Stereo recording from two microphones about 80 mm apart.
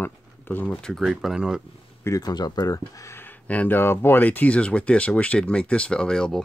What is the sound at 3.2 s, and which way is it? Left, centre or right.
Speech, left.